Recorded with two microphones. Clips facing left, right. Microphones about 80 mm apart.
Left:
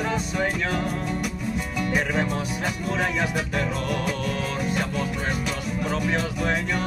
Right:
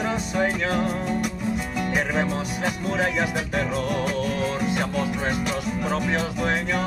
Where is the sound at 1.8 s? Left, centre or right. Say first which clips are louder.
Left 1 dB; centre.